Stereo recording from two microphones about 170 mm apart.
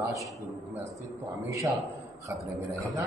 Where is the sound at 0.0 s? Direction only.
20° right (ahead or behind).